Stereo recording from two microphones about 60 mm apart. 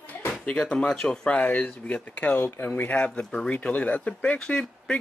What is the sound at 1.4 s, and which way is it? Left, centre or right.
Speech, left.